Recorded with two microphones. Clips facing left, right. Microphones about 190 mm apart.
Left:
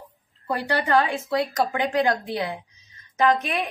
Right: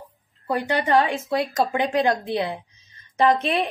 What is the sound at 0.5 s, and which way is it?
A woman's voice, 20° right (ahead or behind).